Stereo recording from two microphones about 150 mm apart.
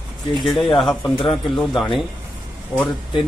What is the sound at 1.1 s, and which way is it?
Speech, 35° left (ahead or behind).